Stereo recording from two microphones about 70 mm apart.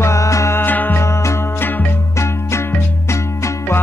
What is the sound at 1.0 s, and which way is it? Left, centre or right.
Music, left.